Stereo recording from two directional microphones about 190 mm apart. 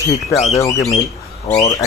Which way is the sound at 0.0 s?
15° left (ahead or behind).